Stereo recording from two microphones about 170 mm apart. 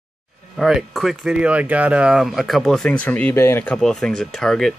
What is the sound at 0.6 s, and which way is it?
Speech, centre (ahead or behind).